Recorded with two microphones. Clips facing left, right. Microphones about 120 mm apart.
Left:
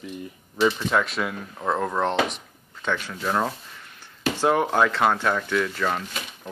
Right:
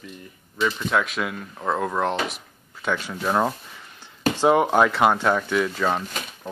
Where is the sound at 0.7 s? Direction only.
Centre (ahead or behind).